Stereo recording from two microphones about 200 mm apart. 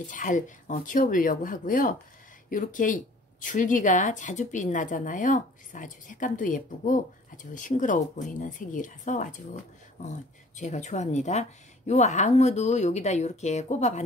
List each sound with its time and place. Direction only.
0.1 s speech: 40° left (ahead or behind)